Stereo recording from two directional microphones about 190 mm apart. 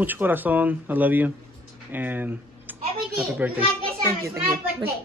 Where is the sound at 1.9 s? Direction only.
10° right (ahead or behind).